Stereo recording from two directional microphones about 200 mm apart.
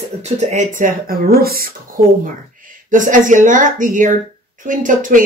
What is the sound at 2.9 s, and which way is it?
Speech, 40° right (ahead or behind).